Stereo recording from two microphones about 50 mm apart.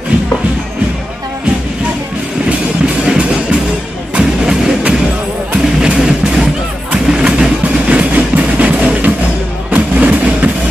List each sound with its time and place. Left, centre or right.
3.1 s music: centre
6.9 s crowd: centre
7.6 s music: right